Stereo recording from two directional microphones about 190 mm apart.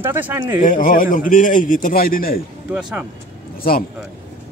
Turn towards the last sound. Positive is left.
turn(degrees=50)  # may be behind; listen again after turning